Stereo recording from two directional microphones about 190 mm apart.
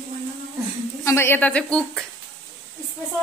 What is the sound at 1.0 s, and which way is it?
A woman's voice, 15° left (ahead or behind).